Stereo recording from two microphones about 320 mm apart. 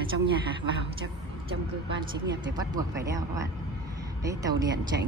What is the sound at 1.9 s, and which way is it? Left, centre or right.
Speech, centre.